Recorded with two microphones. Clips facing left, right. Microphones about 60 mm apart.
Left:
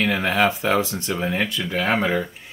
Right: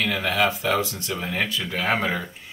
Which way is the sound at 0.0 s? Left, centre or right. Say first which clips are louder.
Left 3 dB; left.